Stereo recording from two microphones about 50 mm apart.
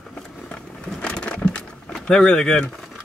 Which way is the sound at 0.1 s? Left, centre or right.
Left.